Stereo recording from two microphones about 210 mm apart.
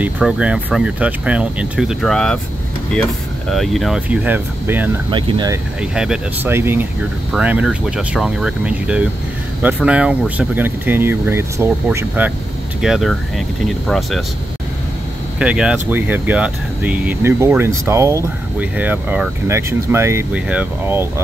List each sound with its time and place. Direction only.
0.0 s speech: 5° right (ahead or behind)
5.8 s speech: 5° right (ahead or behind)
12.8 s speech: centre (ahead or behind)
15.3 s speech: 5° right (ahead or behind)